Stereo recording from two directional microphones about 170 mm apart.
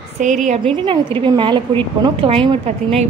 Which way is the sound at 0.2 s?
45° right (ahead or behind).